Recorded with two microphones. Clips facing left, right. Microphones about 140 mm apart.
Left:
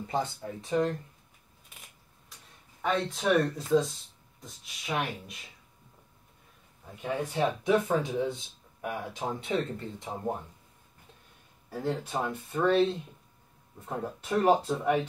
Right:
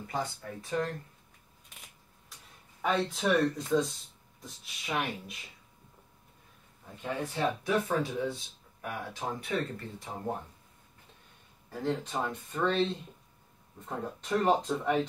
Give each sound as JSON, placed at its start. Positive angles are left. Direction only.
{"t": 0.1, "sound": "speech", "side_deg": 20}
{"t": 2.8, "sound": "speech", "side_deg": 0}
{"t": 7.0, "sound": "speech", "side_deg": 20}
{"t": 11.7, "sound": "speech", "side_deg": 10}
{"t": 14.2, "sound": "speech", "side_deg": 10}